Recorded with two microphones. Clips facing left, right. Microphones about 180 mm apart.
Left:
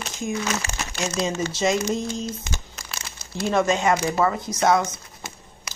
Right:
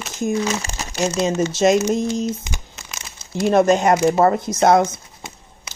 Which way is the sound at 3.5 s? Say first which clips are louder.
Right 6 dB; 50° right (ahead or behind).